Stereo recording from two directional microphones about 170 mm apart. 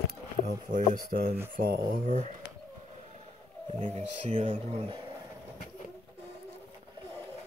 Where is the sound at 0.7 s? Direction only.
55° right (ahead or behind).